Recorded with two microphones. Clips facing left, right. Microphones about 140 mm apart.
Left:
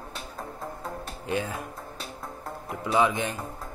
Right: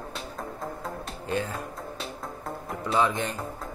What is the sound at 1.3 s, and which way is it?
Speech, 15° left (ahead or behind).